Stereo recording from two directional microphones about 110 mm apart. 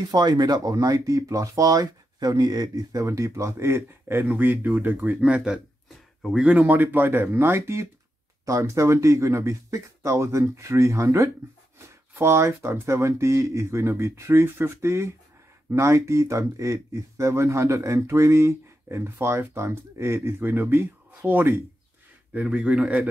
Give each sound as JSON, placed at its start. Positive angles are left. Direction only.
{"t": 0.1, "sound": "speech", "side_deg": -40}